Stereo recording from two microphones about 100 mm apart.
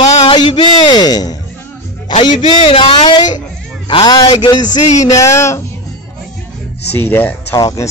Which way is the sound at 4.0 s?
45° left (ahead or behind).